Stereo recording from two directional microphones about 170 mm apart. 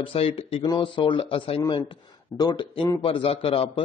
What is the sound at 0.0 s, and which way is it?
Speech, 35° left (ahead or behind).